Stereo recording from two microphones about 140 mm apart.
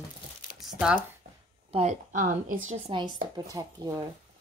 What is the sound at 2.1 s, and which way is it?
Speech, 75° right (ahead or behind).